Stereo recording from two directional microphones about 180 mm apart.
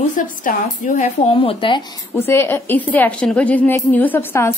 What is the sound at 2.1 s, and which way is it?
A woman's voice, 15° left (ahead or behind).